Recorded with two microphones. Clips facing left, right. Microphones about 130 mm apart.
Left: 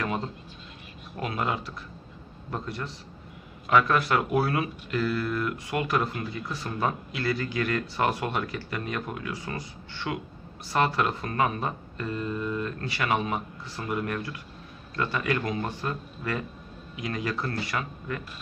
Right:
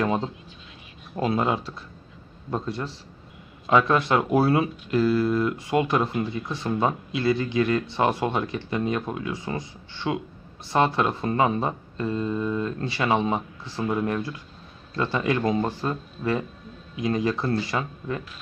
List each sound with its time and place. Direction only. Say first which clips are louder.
0.0 s speech: right 6 dB; 25° right (ahead or behind)